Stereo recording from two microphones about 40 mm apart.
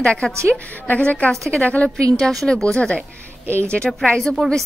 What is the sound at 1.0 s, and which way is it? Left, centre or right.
Speech, left.